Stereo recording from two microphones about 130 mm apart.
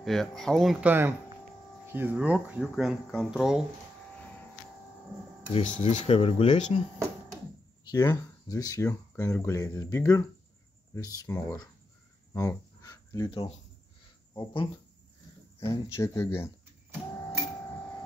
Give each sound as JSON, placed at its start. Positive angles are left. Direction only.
{"t": 0.0, "sound": "speech", "side_deg": 0}
{"t": 0.7, "sound": "speech", "side_deg": -15}
{"t": 2.6, "sound": "speech", "side_deg": 0}
{"t": 5.8, "sound": "speech", "side_deg": 50}
{"t": 7.9, "sound": "speech", "side_deg": 30}
{"t": 12.4, "sound": "a sound", "side_deg": 25}
{"t": 14.3, "sound": "speech", "side_deg": 40}
{"t": 15.6, "sound": "speech", "side_deg": 20}